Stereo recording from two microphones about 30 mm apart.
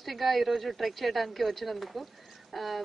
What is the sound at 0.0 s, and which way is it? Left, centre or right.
Speech, centre.